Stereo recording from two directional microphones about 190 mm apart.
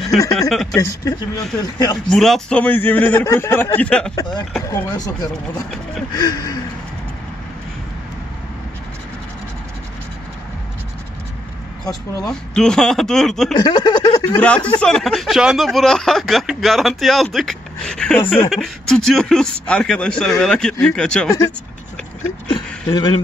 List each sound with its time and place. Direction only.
0.3 s speech: centre (ahead or behind)
0.7 s a man's voice: 15° left (ahead or behind)
2.0 s a man's voice: centre (ahead or behind)
4.1 s speech: 20° left (ahead or behind)
5.5 s speech: centre (ahead or behind)
6.1 s speech: 20° left (ahead or behind)
11.8 s speech: 20° left (ahead or behind)
12.3 s speech: 5° left (ahead or behind)
13.6 s speech: 20° left (ahead or behind)
14.2 s speech: 10° left (ahead or behind)
22.5 s a sound: 20° left (ahead or behind)